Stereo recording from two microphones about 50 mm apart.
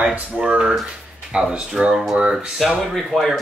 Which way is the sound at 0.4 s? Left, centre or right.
Centre.